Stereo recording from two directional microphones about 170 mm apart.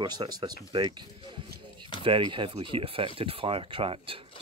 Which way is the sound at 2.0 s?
30° right (ahead or behind).